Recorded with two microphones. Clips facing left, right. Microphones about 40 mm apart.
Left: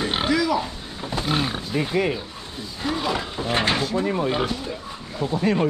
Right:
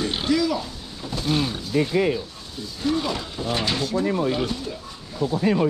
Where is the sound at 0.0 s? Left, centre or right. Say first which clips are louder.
Left 2 dB; left.